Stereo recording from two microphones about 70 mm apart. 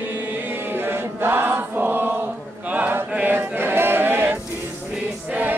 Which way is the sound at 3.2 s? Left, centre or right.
Right.